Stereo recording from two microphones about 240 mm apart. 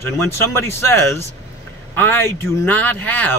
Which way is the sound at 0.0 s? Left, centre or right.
Centre.